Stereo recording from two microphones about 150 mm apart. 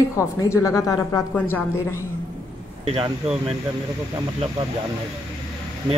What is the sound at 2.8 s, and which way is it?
Speech, 40° right (ahead or behind).